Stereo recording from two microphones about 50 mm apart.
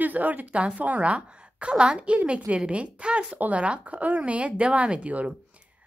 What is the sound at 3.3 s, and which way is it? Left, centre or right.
Speech, right.